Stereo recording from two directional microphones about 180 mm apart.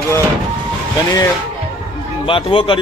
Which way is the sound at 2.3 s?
30° left (ahead or behind).